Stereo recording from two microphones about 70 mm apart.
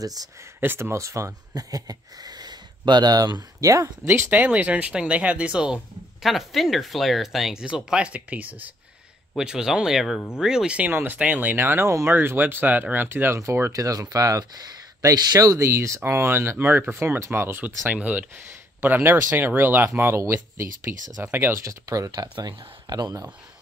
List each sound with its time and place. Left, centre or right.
0.6 s speech: right
1.5 s speech: right
3.6 s speech: right
4.3 s speech: right
6.2 s speech: centre
7.6 s speech: centre
9.4 s speech: centre
10.9 s speech: right
11.1 s speech: right
15.6 s speech: right
21.5 s speech: right